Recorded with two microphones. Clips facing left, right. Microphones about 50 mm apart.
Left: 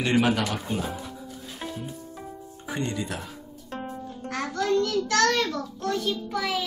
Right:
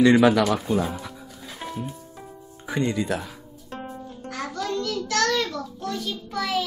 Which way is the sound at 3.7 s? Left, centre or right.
Centre.